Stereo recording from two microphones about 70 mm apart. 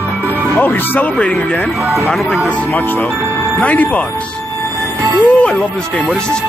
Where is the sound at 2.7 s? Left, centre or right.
Left.